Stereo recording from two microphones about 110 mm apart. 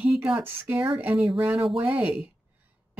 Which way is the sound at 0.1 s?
10° right (ahead or behind).